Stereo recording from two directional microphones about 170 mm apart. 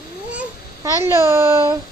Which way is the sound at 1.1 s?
15° right (ahead or behind).